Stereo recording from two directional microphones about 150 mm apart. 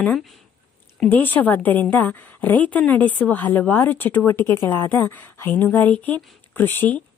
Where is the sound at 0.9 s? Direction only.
10° left (ahead or behind).